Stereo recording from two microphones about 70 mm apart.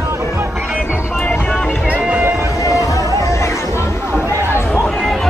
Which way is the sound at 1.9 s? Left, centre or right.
Right.